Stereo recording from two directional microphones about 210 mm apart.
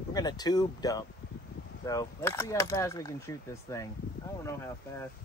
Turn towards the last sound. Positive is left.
turn(degrees=15)  # may be behind; listen again after turning